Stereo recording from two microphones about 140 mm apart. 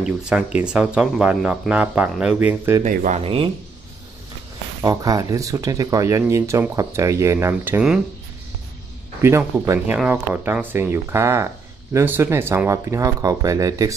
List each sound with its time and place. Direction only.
0.0 s speech: 5° right (ahead or behind)
2.8 s speech: 65° right (ahead or behind)
3.2 s speech: 40° right (ahead or behind)
4.8 s speech: 25° right (ahead or behind)
9.2 s speech: 15° right (ahead or behind)